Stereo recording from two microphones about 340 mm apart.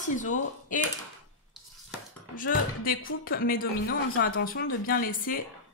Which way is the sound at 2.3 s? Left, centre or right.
Left.